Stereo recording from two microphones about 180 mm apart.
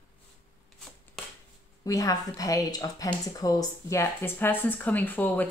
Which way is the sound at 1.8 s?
20° left (ahead or behind).